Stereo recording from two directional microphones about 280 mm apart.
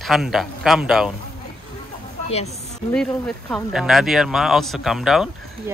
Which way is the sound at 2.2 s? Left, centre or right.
Left.